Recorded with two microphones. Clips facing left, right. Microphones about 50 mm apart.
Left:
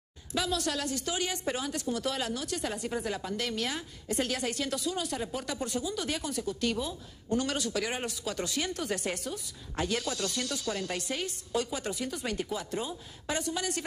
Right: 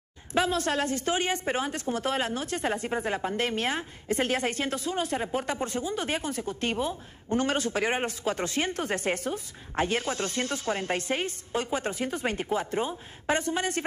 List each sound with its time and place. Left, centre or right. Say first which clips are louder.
0.3 s a woman's voice: right 5 dB; right